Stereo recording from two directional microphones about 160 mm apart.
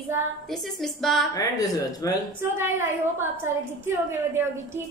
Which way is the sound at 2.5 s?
15° right (ahead or behind).